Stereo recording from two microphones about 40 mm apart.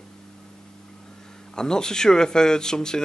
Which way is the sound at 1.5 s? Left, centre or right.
Centre.